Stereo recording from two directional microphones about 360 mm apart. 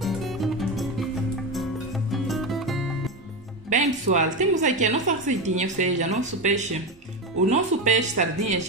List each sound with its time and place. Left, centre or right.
0.0 s music: centre
3.7 s a woman's voice: centre